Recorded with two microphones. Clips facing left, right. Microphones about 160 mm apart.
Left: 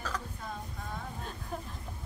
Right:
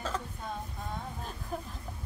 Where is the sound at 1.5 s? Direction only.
5° right (ahead or behind).